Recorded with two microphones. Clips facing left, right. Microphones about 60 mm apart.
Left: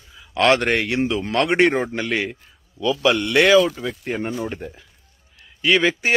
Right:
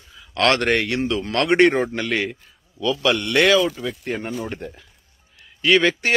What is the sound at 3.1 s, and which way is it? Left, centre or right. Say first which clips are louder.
A man's voice: left 2 dB; centre.